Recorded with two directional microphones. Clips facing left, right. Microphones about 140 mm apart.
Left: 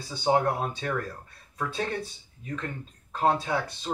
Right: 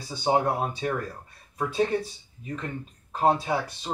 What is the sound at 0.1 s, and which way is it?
Speech, 15° right (ahead or behind).